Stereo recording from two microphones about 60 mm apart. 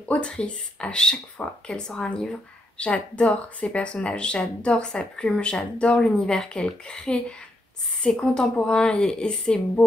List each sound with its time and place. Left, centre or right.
0.2 s a woman's voice: centre